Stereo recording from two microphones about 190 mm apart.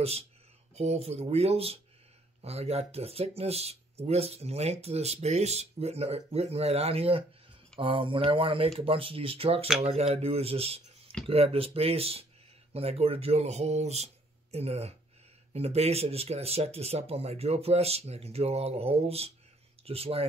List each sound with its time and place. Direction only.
0.7 s speech: 35° right (ahead or behind)